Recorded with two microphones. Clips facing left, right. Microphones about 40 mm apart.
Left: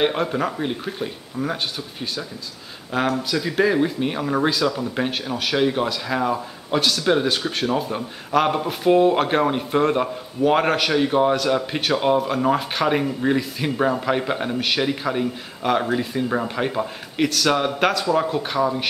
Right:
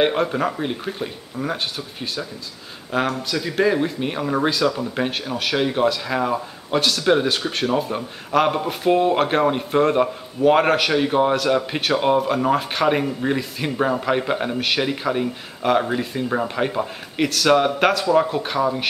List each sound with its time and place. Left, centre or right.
0.0 s speech: centre